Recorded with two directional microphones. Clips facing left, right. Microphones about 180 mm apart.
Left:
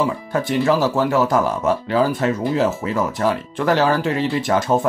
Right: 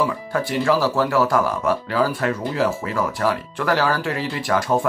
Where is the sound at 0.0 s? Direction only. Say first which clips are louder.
Left 2 dB; 20° left (ahead or behind).